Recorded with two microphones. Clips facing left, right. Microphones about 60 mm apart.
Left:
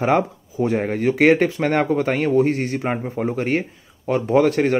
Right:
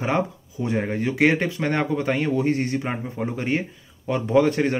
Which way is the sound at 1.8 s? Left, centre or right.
Left.